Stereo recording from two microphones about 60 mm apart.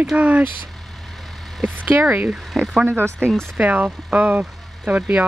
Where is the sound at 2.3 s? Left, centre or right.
Centre.